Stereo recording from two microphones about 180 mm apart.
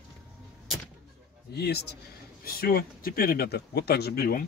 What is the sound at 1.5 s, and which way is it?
Speech, 65° left (ahead or behind).